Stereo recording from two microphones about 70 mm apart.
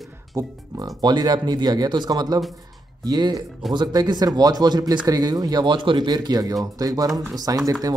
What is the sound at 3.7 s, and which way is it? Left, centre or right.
Speech, right.